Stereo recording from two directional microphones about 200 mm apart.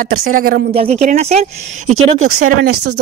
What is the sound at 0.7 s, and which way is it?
Speech, 30° right (ahead or behind).